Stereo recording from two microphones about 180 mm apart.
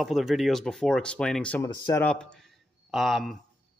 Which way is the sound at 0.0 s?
Centre (ahead or behind).